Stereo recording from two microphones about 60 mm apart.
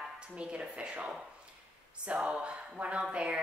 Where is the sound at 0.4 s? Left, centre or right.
Centre.